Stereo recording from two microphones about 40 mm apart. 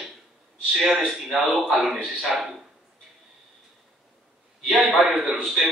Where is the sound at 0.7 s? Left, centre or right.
Centre.